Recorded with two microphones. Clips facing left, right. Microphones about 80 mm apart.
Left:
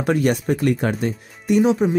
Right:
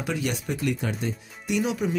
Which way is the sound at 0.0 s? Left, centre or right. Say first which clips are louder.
Left 10 dB; left.